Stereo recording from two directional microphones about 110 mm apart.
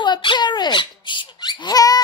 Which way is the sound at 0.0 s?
45° left (ahead or behind).